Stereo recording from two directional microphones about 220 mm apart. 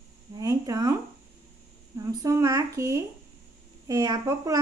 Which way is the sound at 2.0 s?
15° right (ahead or behind).